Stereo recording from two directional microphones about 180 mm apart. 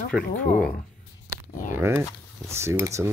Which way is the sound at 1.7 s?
15° right (ahead or behind).